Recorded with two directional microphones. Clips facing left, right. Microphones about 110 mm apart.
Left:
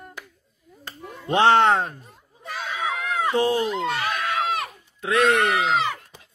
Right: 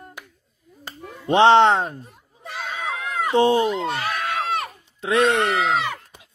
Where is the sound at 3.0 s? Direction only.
30° right (ahead or behind).